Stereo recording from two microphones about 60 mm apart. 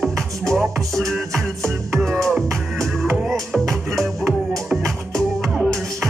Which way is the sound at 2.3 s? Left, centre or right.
Centre.